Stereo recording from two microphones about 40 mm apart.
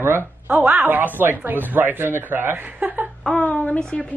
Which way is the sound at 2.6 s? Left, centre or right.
Right.